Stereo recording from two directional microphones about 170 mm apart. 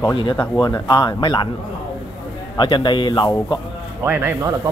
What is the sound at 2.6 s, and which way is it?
Speech, 25° left (ahead or behind).